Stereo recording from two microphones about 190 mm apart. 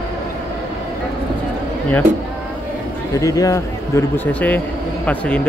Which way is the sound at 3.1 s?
15° left (ahead or behind).